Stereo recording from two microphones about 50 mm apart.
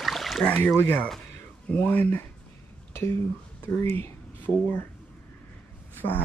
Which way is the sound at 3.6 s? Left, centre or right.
Left.